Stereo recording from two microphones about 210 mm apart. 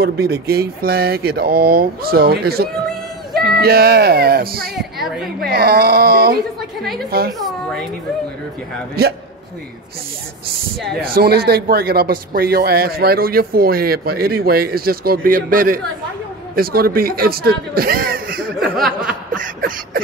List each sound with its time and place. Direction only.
0.0 s speech: 50° right (ahead or behind)
4.7 s a woman's voice: centre (ahead or behind)
5.4 s speech: 45° right (ahead or behind)
11.1 s speech: 50° right (ahead or behind)
18.8 s a woman's voice: centre (ahead or behind)
19.3 s a sound: 40° right (ahead or behind)